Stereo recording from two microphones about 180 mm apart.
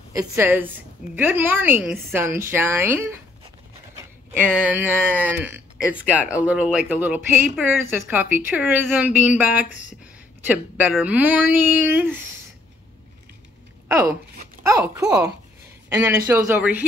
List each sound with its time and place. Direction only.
0.1 s speech: 10° right (ahead or behind)
4.0 s a sound: 10° right (ahead or behind)
5.2 s speech: 10° right (ahead or behind)
13.8 s speech: 15° right (ahead or behind)